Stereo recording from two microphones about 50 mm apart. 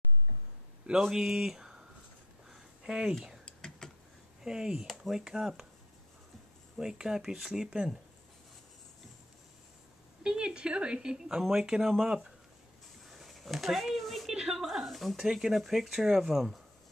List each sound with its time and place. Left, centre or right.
1.0 s speech: centre
3.4 s whispering: centre
4.4 s speech: centre
6.8 s speech: centre
10.2 s speech: centre
13.1 s a sound: centre
15.1 s speech: centre